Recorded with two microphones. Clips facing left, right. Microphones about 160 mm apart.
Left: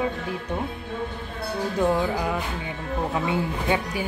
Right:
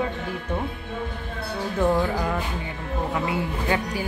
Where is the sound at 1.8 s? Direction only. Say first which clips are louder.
Right 1 dB; 10° left (ahead or behind).